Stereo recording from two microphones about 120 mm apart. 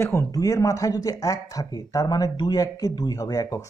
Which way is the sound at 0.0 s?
25° left (ahead or behind).